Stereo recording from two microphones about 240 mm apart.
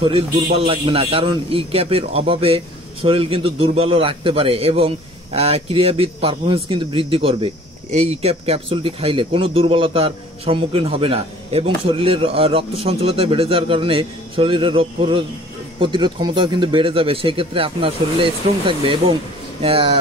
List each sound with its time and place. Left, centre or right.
0.0 s a man's voice: right